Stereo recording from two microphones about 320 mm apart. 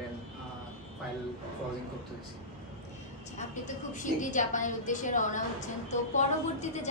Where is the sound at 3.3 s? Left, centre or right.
Left.